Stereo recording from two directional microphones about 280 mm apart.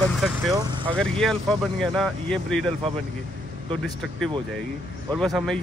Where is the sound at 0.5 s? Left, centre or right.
Centre.